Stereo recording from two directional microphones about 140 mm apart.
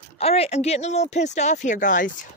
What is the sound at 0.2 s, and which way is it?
Speech, 45° left (ahead or behind).